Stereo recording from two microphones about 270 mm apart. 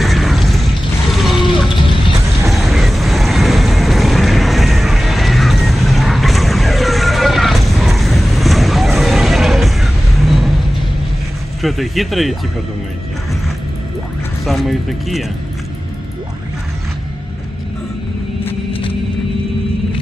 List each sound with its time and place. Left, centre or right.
0.0 s mechanisms: centre
1.1 s a sound: centre
2.4 s vehicle: centre
11.6 s speech: centre
14.4 s speech: centre
18.7 s a sound: centre